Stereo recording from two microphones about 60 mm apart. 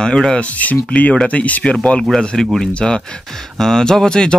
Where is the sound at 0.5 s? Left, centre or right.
Left.